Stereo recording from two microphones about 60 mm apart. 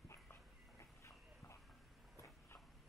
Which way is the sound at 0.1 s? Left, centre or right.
Left.